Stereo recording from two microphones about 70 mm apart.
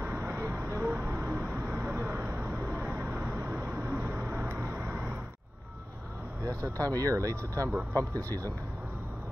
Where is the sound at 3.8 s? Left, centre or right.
Right.